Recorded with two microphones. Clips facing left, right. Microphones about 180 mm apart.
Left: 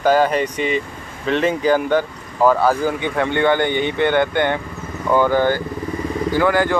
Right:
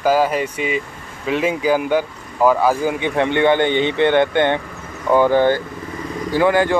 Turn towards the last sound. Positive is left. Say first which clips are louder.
# right 1 dB
turn(degrees=-25)  # may be behind; listen again after turning